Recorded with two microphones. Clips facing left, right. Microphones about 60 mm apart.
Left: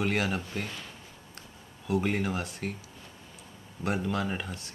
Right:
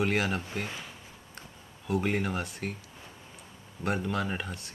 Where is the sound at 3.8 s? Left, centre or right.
Centre.